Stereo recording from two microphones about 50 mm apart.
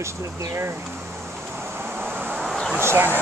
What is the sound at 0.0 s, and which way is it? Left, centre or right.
Speech, right.